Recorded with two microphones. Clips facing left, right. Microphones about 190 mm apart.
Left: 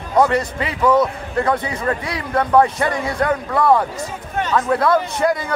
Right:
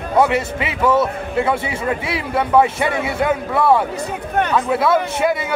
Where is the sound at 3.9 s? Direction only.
60° right (ahead or behind).